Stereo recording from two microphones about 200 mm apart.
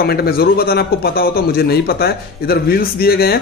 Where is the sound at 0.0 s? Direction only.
50° left (ahead or behind).